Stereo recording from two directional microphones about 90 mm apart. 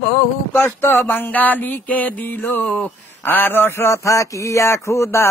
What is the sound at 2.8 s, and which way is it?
Speech, 20° left (ahead or behind).